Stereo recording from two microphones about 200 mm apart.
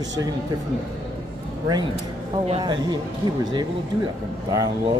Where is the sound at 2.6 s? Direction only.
20° right (ahead or behind).